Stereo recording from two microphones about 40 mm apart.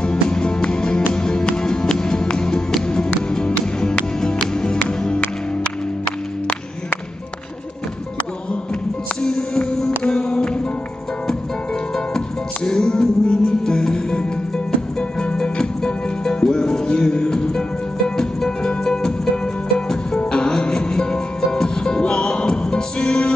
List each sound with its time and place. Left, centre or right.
0.0 s music: left
9.2 s music: centre
12.6 s music: centre